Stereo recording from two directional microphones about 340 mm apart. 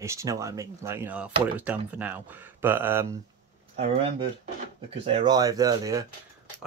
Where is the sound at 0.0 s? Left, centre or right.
Centre.